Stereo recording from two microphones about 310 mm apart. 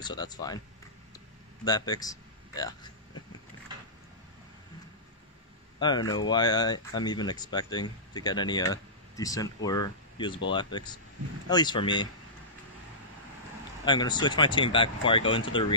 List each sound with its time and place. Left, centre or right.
0.0 s speech: centre
1.6 s speech: centre
5.8 s speech: centre
13.8 s speech: centre